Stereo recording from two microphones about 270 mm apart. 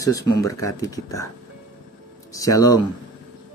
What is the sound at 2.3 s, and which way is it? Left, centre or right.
Speech, centre.